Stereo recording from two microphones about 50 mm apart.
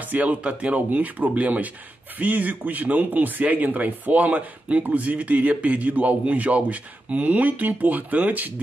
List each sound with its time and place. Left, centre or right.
0.0 s a man's voice: right